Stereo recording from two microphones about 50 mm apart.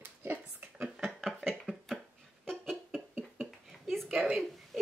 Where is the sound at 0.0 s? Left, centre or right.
Right.